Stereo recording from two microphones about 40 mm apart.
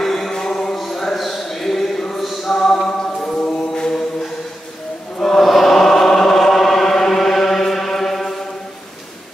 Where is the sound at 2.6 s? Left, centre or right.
Centre.